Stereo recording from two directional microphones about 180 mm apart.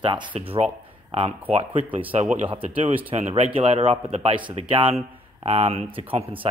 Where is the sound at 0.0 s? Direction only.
30° right (ahead or behind).